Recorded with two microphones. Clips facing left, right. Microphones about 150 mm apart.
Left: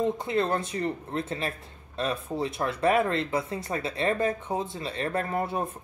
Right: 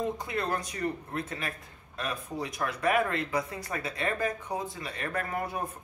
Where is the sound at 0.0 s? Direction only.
25° left (ahead or behind).